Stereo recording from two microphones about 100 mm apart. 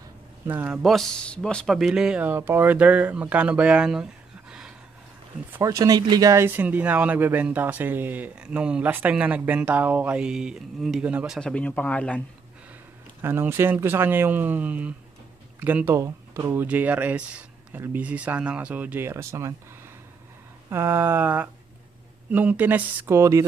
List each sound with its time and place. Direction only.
0.5 s speech: 20° right (ahead or behind)
0.8 s speech: 5° left (ahead or behind)
1.8 s speech: 5° right (ahead or behind)
5.6 s speech: 35° right (ahead or behind)
6.4 s speech: 20° right (ahead or behind)
11.3 s speech: 10° left (ahead or behind)
13.2 s speech: 25° right (ahead or behind)
16.6 s speech: 15° right (ahead or behind)
20.7 s speech: 25° right (ahead or behind)